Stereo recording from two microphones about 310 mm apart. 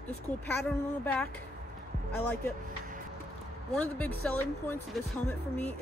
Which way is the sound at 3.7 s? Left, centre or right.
Centre.